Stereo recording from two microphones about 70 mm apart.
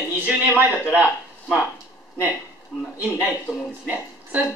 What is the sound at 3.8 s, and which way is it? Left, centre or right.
Speech, centre.